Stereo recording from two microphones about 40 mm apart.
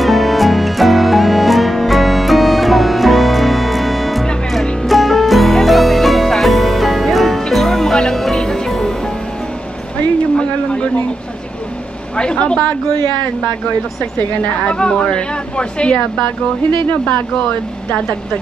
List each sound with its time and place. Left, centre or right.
0.0 s music: centre
7.9 s music: centre
10.3 s a sound: left
12.2 s a sound: left
14.6 s speech: left
16.9 s speech: left